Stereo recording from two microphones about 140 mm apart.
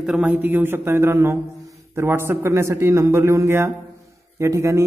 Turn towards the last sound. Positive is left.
turn(degrees=-20)  # may be behind; listen again after turning